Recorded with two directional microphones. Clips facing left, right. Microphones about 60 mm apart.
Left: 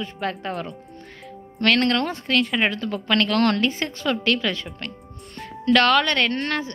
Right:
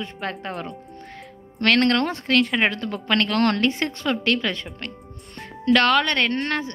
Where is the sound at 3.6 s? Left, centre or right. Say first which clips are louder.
Right 1 dB; right.